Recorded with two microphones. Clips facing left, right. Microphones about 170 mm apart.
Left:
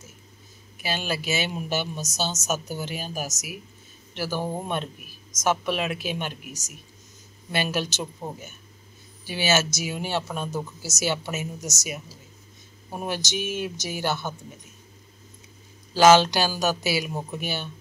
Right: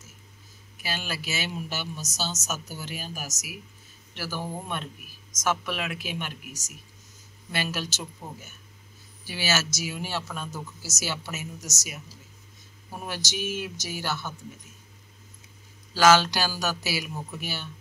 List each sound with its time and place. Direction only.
0.8 s speech: 20° left (ahead or behind)
15.9 s speech: 20° left (ahead or behind)